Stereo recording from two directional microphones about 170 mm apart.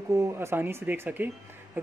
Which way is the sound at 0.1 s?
15° right (ahead or behind).